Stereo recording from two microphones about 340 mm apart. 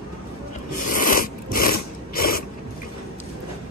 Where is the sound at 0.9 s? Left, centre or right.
Left.